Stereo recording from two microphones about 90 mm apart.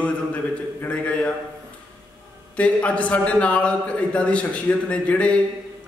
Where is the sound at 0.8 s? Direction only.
10° left (ahead or behind).